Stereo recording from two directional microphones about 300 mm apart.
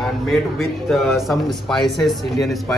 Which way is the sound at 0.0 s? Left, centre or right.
Centre.